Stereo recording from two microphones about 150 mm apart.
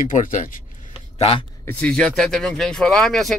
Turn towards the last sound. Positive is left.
turn(degrees=0)  # may be behind; listen again after turning